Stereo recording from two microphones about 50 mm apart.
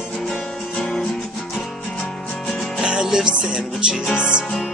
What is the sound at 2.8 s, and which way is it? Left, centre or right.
Music, centre.